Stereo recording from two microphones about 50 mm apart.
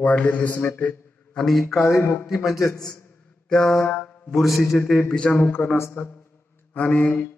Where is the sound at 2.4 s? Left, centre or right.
Centre.